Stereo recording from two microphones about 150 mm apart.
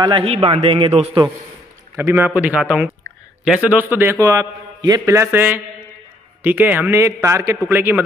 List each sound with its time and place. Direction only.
0.2 s speech: 40° right (ahead or behind)
2.0 s a man's voice: 15° right (ahead or behind)